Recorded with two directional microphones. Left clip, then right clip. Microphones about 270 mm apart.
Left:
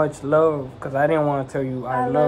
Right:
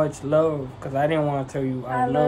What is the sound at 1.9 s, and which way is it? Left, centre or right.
Speech, centre.